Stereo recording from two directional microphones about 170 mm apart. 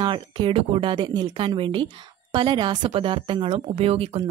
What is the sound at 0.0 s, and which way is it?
A woman's voice, 25° right (ahead or behind).